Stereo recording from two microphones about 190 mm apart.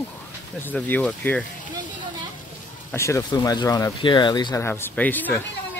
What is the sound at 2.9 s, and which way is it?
Speech, 15° left (ahead or behind).